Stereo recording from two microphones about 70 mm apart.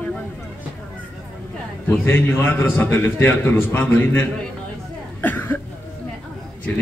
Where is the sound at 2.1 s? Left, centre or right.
Left.